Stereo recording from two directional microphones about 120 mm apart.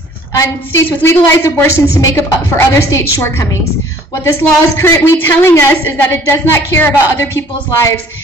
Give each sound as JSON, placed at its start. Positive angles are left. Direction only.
{"t": 0.8, "sound": "a man's voice", "side_deg": 20}